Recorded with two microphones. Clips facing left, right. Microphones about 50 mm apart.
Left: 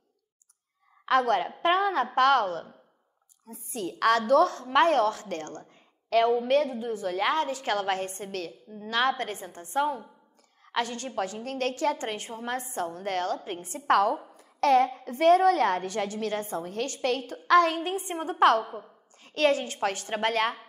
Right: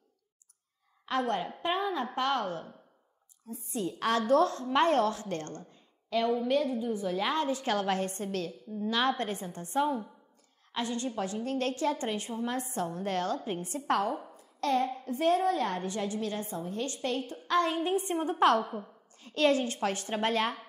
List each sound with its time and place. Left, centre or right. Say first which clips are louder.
1.0 s a woman's voice: left 7 dB; left
1.6 s a sound: left 8 dB; left
2.1 s a woman's voice: left 10 dB; left
3.4 s a woman's voice: even; left
6.0 s a woman's voice: left 5 dB; left
7.2 s a woman's voice: left 5 dB; left
8.5 s a woman's voice: right 3 dB; left
8.8 s a woman's voice: left 2 dB; left
10.7 s a woman's voice: left 3 dB; left
13.8 s a woman's voice: left 7 dB; left
14.3 s a sound: left 9 dB; left
15.0 s a woman's voice: left 7 dB; left
18.6 s a woman's voice: even; centre
19.2 s a woman's voice: left 2 dB; left